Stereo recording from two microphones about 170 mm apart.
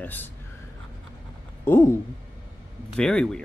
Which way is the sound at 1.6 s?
15° left (ahead or behind).